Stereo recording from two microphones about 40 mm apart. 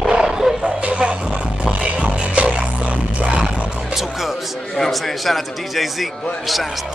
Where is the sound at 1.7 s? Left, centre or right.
Right.